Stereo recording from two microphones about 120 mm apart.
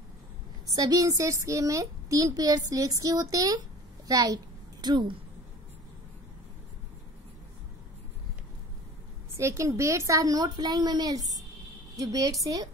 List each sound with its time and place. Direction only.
0.7 s a woman's voice: 30° right (ahead or behind)
4.8 s a woman's voice: 40° right (ahead or behind)
9.4 s a woman's voice: 25° right (ahead or behind)